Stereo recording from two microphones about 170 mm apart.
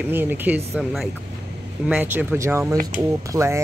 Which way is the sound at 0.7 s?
Centre (ahead or behind).